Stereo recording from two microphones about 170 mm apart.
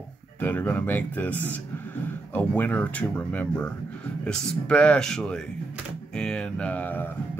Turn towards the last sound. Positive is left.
turn(degrees=10)  # may be behind; listen again after turning